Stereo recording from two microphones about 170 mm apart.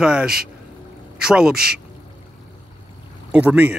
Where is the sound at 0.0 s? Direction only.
5° right (ahead or behind).